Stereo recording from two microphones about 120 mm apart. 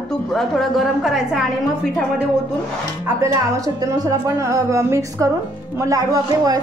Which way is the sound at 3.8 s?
30° right (ahead or behind).